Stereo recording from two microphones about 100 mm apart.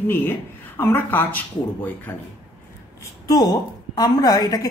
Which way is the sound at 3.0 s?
40° left (ahead or behind).